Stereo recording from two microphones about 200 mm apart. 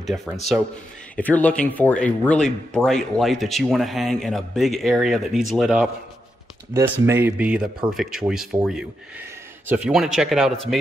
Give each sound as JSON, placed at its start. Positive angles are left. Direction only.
{"t": 0.0, "sound": "speech", "side_deg": 0}